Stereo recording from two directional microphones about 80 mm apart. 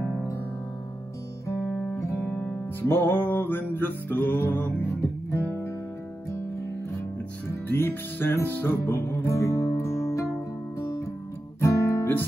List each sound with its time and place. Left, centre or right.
1.7 s guitar: centre
2.3 s music: centre; by 5.4 s left
7.4 s music: left
11.6 s guitar: left